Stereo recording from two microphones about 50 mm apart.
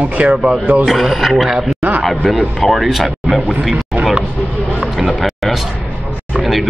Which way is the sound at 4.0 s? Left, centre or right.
Centre.